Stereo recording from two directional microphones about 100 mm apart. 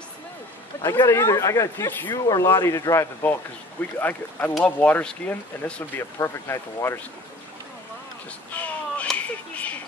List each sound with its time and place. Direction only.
0.8 s speech: 30° left (ahead or behind)
2.4 s speech: 25° left (ahead or behind)
6.1 s speech: 25° left (ahead or behind)
8.5 s a sound: 15° left (ahead or behind)